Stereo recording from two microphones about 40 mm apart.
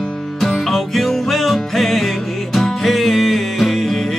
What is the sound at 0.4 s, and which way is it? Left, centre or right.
Music, centre.